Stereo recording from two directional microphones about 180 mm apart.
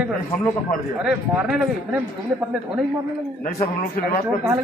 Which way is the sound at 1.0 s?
Centre (ahead or behind).